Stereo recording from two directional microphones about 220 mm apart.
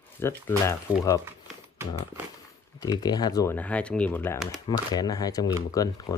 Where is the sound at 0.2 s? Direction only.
10° left (ahead or behind).